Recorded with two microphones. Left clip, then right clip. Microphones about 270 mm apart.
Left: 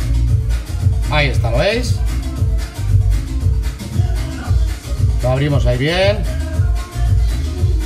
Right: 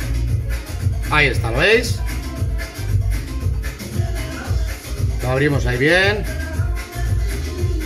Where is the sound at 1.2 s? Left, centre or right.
Left.